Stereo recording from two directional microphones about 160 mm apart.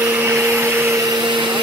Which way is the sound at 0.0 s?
15° right (ahead or behind).